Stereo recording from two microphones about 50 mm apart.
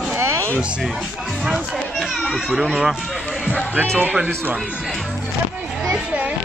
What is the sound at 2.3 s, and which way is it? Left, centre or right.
Speech, centre.